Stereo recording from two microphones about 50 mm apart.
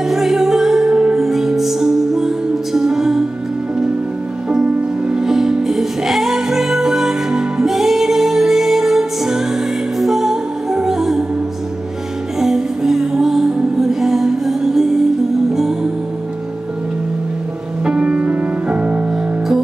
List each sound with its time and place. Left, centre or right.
0.1 s music: centre
5.1 s music: centre
12.4 s music: centre
17.8 s music: centre